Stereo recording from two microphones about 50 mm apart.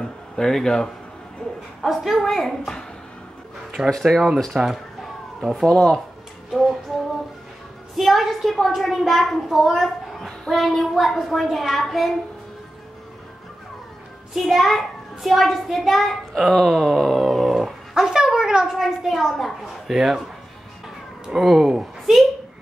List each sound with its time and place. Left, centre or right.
0.0 s a sound: centre
1.8 s a child's voice: centre
3.8 s a child's voice: centre
4.6 s a sound: centre
5.7 s speech: centre
6.5 s music: centre
7.9 s a child's voice: centre
14.3 s a sound: centre
18.8 s a child's voice: centre
21.3 s speech: centre